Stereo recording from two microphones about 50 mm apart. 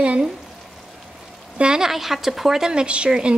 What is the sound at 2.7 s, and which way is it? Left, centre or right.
Speech, right.